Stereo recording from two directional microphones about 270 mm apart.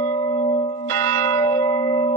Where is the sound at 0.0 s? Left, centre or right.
Centre.